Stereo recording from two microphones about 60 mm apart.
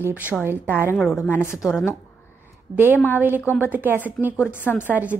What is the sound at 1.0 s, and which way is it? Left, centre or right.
Speech, centre.